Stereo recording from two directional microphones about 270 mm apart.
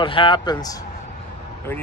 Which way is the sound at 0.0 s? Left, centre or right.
Centre.